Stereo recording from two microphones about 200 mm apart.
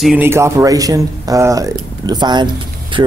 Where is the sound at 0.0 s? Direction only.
10° right (ahead or behind).